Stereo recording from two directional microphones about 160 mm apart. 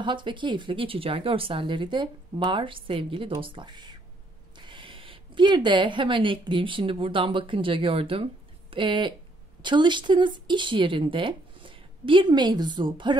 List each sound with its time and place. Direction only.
0.0 s a woman's voice: 30° right (ahead or behind)